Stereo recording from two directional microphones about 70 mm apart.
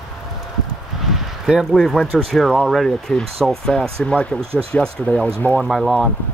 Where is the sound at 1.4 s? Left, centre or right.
Centre.